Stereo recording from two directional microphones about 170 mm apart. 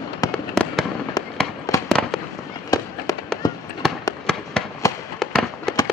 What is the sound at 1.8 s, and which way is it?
Fireworks, centre (ahead or behind).